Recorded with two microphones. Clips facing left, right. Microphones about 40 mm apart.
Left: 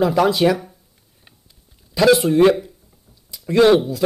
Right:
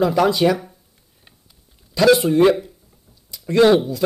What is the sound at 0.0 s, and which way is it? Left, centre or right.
Speech, centre.